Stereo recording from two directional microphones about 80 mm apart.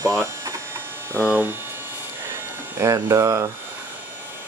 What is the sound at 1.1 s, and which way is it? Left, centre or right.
Speech, right.